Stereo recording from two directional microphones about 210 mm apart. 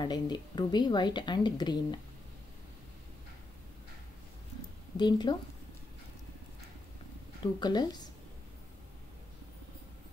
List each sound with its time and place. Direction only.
0.0 s speech: 20° left (ahead or behind)
4.9 s speech: 20° left (ahead or behind)
7.6 s speech: 20° left (ahead or behind)